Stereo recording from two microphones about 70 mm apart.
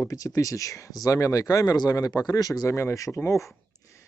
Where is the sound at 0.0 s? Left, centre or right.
Left.